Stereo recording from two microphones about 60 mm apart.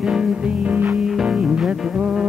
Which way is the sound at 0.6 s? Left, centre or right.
Right.